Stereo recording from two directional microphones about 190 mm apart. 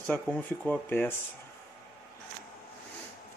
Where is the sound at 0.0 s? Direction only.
10° left (ahead or behind).